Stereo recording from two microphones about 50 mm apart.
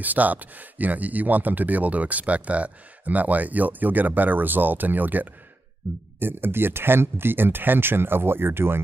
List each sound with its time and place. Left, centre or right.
0.0 s speech: right